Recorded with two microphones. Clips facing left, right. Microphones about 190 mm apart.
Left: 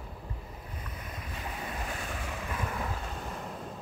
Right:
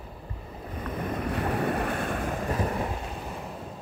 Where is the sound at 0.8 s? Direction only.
60° right (ahead or behind); by 3.0 s 30° right (ahead or behind).